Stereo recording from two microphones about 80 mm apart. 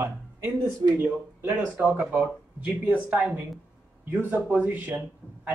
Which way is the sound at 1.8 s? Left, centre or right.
Centre.